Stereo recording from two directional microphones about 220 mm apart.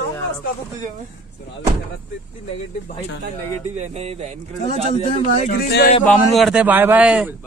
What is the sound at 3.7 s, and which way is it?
A man's voice, 30° right (ahead or behind).